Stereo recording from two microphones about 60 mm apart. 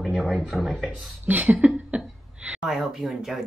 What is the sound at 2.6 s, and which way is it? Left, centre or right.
Speech, centre.